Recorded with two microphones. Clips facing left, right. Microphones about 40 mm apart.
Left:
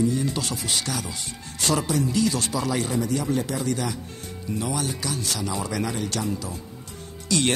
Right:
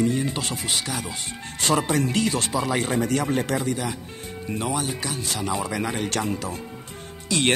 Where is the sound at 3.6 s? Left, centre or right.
Centre.